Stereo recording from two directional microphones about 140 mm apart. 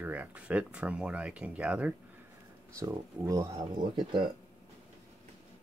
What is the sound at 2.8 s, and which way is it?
Speech, 25° right (ahead or behind).